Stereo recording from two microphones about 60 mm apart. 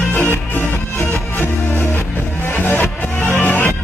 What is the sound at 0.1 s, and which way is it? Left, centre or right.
Music, left.